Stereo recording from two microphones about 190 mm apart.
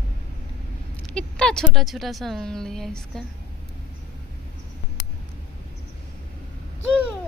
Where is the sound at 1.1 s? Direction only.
5° left (ahead or behind).